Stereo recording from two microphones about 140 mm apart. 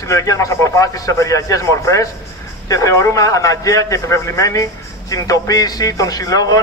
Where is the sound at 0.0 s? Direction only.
25° left (ahead or behind).